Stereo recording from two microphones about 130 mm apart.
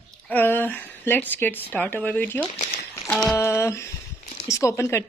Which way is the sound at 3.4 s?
20° left (ahead or behind).